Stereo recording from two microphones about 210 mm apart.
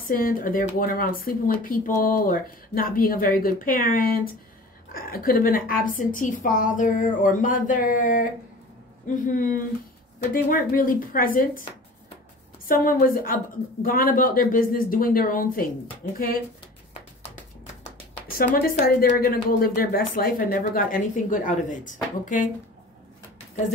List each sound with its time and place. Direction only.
0.1 s speech: 40° left (ahead or behind)
12.6 s speech: 40° left (ahead or behind)
18.5 s a woman's voice: 45° left (ahead or behind)